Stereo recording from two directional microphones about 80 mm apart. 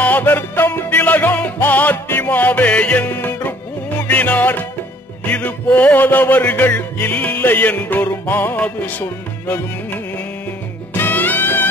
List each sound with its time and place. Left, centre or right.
0.0 s music: left
3.1 s music: left
8.5 s music: centre
9.0 s music: left